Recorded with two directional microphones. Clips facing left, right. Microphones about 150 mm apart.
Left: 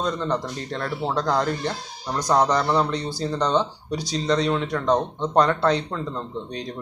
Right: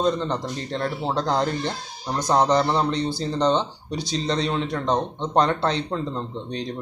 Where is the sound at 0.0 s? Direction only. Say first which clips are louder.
Right 2 dB; 25° right (ahead or behind).